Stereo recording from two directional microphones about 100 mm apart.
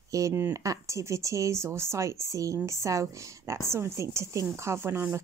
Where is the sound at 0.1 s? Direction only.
30° right (ahead or behind).